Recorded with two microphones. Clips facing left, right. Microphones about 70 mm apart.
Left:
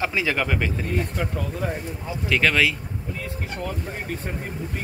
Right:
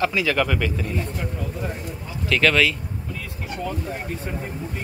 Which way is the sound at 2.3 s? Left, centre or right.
Centre.